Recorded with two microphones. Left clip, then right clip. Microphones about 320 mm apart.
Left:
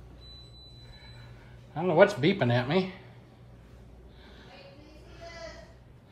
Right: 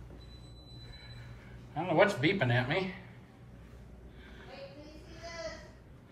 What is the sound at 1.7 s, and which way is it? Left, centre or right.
Speech, left.